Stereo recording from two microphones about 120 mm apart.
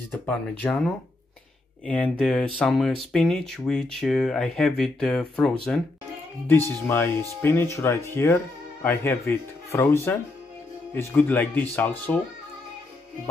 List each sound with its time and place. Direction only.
0.1 s speech: 10° left (ahead or behind)
2.0 s speech: centre (ahead or behind)
6.9 s speech: 20° left (ahead or behind)
11.1 s speech: 15° left (ahead or behind)